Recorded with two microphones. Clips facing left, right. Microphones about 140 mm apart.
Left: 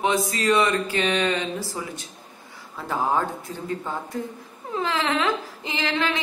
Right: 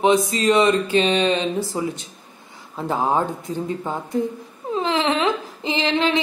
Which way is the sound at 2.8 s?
20° right (ahead or behind).